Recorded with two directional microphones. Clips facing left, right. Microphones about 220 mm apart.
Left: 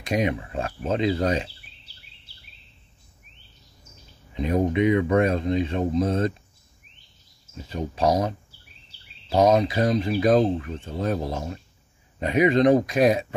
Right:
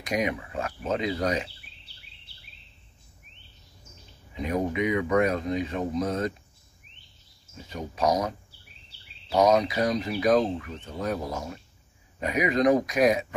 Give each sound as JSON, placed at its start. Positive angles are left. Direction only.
{"t": 0.0, "sound": "speech", "side_deg": 30}
{"t": 4.4, "sound": "speech", "side_deg": 25}
{"t": 7.7, "sound": "speech", "side_deg": 30}